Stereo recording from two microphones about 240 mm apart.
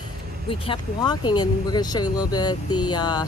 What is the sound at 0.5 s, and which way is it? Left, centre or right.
Speech, left.